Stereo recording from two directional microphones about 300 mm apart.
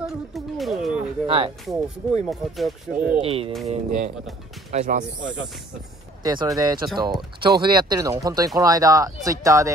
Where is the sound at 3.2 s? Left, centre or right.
Centre.